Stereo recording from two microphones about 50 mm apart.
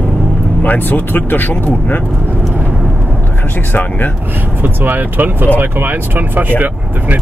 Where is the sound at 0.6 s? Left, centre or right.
Left.